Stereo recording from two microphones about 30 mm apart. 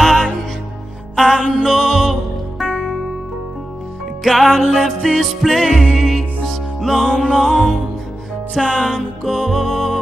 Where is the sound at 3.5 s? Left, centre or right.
Centre.